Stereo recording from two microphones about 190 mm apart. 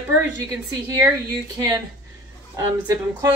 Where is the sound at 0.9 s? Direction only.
20° right (ahead or behind).